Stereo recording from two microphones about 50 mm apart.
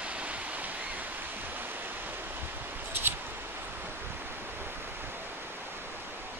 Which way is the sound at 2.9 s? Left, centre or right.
Right.